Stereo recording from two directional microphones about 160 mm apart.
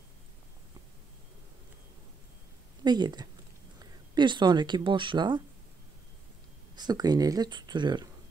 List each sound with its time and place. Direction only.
2.8 s a woman's voice: 25° right (ahead or behind)
6.7 s speech: 25° right (ahead or behind)